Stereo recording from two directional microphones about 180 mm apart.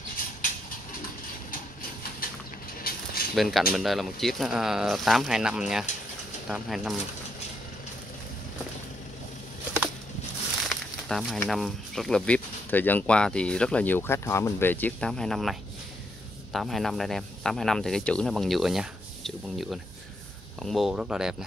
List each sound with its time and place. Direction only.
2.9 s a sound: 55° left (ahead or behind)
3.3 s speech: centre (ahead or behind)
10.7 s speech: centre (ahead or behind)
16.5 s speech: centre (ahead or behind)